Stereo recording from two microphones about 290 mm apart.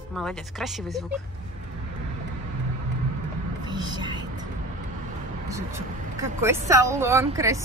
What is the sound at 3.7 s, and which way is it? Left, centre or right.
Music, centre.